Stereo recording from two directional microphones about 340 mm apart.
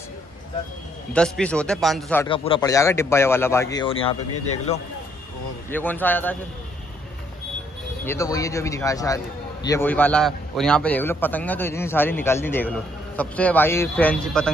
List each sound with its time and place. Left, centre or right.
1.1 s a man's voice: centre
2.2 s speech: centre
5.7 s a man's voice: centre
8.0 s a man's voice: centre